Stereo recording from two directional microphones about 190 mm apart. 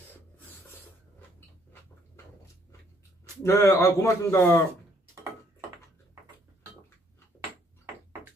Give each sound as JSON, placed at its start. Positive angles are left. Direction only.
{"t": 3.4, "sound": "a man's voice", "side_deg": 15}